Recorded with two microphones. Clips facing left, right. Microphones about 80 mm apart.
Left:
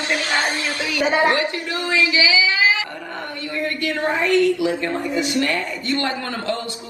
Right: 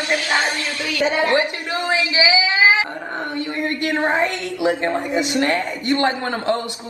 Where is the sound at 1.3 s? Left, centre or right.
Right.